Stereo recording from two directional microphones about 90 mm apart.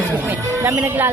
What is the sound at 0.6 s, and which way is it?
Speech, 35° right (ahead or behind).